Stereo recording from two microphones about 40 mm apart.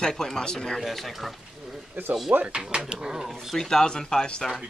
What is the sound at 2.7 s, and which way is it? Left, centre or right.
Speech, centre.